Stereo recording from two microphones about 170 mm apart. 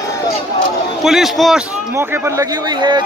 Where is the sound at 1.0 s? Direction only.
Centre (ahead or behind).